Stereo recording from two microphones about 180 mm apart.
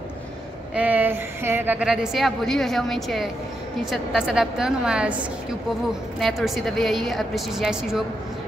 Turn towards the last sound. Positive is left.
turn(degrees=0)  # may be behind; listen again after turning